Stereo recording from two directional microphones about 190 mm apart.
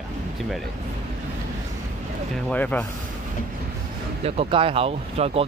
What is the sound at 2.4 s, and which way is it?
Speech, 10° left (ahead or behind).